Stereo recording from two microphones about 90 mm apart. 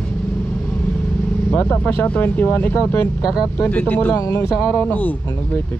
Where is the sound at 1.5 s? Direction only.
20° left (ahead or behind).